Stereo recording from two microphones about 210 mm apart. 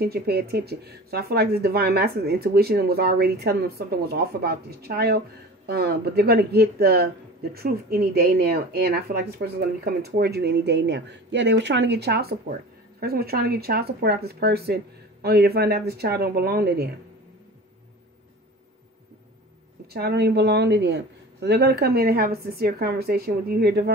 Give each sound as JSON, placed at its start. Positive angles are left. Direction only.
{"t": 0.0, "sound": "speech", "side_deg": -50}
{"t": 19.9, "sound": "speech", "side_deg": -50}